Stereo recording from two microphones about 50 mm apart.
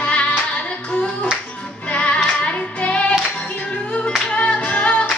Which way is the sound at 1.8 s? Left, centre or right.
Left.